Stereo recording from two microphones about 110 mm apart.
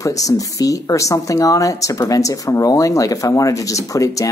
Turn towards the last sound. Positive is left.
turn(degrees=30)  # may be behind; listen again after turning